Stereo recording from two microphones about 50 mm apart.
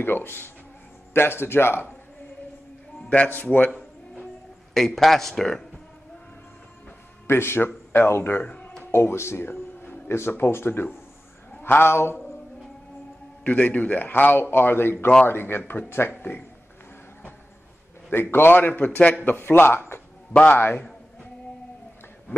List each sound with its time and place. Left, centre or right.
0.0 s speech: left
3.3 s a man's voice: left
4.7 s speech: centre
7.2 s speech: left
8.5 s music: left
8.9 s speech: left
9.5 s a sound: left
10.1 s speech: left
13.4 s a man's voice: left
18.1 s a man's voice: left
19.2 s speech: left